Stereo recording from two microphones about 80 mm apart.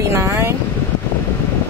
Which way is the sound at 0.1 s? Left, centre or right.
Right.